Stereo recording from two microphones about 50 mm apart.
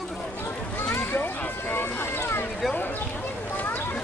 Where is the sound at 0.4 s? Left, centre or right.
Left.